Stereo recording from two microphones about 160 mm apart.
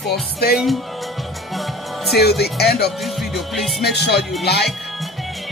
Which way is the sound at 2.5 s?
85° left.